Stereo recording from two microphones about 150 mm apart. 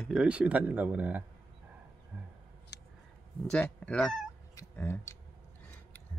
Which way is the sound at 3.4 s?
5° left (ahead or behind).